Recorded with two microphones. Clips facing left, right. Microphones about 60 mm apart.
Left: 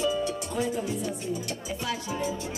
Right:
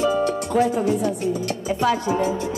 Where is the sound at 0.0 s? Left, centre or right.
Right.